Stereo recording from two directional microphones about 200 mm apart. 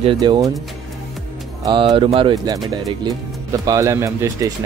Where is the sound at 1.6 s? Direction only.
25° right (ahead or behind).